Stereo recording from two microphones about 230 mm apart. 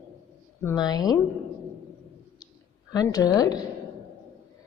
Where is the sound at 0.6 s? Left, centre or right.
Centre.